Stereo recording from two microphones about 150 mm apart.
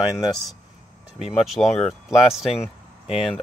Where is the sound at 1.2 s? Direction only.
40° left (ahead or behind).